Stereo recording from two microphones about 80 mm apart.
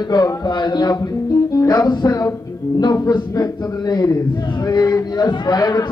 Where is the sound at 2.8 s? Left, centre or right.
Left.